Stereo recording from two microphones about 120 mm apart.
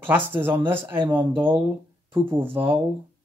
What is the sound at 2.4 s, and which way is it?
Speech, 15° right (ahead or behind).